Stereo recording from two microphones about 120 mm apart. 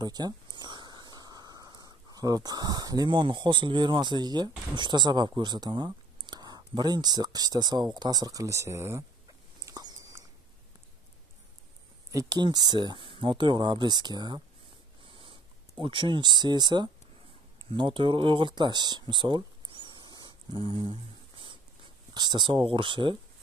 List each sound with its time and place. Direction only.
0.0 s speech: 35° right (ahead or behind)
9.7 s a sound: 30° right (ahead or behind)
12.1 s speech: 30° right (ahead or behind)
15.8 s speech: 45° right (ahead or behind)
17.6 s a sound: 45° right (ahead or behind)
22.1 s speech: 35° right (ahead or behind)